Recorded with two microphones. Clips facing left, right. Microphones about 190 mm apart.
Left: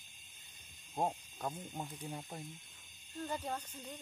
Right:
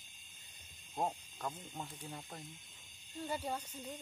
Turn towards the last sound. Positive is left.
turn(degrees=-10)  # may be behind; listen again after turning